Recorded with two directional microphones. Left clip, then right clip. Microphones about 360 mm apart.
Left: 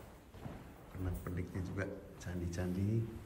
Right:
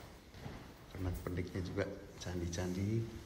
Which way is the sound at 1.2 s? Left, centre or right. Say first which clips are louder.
Right 3 dB; centre.